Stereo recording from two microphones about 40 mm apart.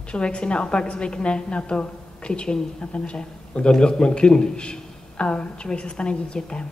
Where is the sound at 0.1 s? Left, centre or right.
Left.